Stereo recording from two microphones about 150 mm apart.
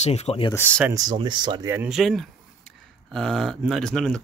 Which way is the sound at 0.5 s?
10° left (ahead or behind).